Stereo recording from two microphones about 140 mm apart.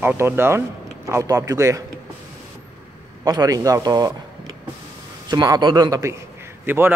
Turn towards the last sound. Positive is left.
turn(degrees=-15)  # may be behind; listen again after turning